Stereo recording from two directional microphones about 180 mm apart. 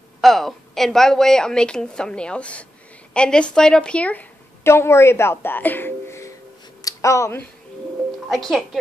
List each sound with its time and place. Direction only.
0.2 s a woman's voice: centre (ahead or behind)
6.8 s a sound: 20° left (ahead or behind)
8.3 s a woman's voice: centre (ahead or behind)